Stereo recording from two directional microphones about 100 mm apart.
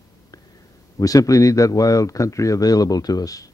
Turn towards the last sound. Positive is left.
turn(degrees=35)  # may be behind; listen again after turning